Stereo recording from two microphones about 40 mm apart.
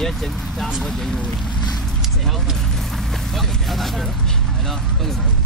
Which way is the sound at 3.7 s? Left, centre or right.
Centre.